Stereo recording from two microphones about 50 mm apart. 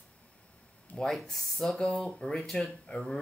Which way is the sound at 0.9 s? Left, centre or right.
Centre.